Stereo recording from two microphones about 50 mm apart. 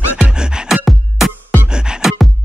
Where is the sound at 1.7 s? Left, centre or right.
Centre.